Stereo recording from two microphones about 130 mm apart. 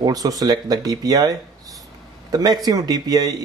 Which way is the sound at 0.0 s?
30° right (ahead or behind).